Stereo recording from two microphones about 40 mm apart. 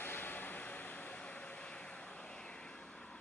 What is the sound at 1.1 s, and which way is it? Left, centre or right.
Vehicle, left.